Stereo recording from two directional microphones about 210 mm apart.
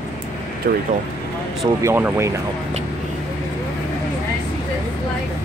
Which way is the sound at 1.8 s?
10° right (ahead or behind).